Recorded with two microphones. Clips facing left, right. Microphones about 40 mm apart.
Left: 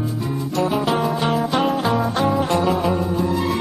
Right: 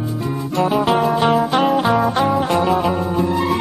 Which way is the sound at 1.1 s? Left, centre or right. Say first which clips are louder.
Right 4 dB; right.